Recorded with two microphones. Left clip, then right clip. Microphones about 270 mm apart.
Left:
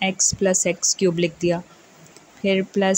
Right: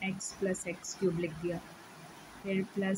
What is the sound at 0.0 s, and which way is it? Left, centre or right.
Speech, left.